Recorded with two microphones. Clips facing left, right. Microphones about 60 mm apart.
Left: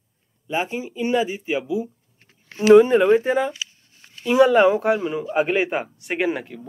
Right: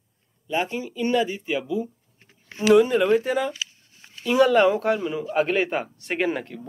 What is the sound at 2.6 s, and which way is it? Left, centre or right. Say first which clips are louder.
Speech: left 5 dB; left.